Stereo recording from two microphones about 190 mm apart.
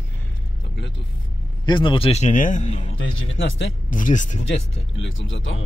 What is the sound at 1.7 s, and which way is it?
A man's voice, 25° left (ahead or behind).